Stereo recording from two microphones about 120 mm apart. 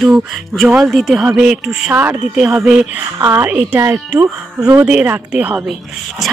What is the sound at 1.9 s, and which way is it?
Speech, 15° right (ahead or behind).